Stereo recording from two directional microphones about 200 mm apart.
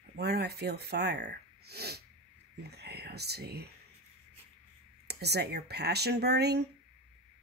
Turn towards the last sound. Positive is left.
turn(degrees=-55)  # may be behind; listen again after turning